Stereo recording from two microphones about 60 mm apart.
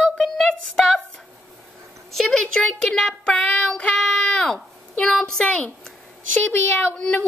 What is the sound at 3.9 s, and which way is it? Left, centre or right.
Wail, centre.